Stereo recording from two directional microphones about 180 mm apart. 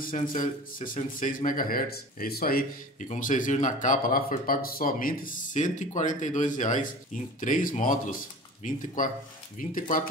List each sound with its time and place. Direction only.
0.0 s a man's voice: 45° left (ahead or behind)